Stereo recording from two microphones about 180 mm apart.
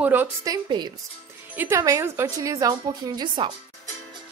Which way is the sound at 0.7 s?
25° right (ahead or behind).